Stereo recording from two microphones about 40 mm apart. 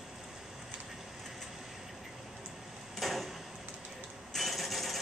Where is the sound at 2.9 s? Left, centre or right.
Centre.